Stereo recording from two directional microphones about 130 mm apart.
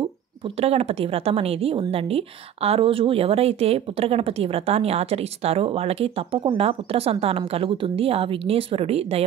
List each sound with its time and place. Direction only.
0.6 s a woman's voice: 50° right (ahead or behind)